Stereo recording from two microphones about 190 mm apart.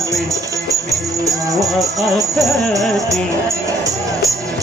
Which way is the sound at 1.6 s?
20° right (ahead or behind).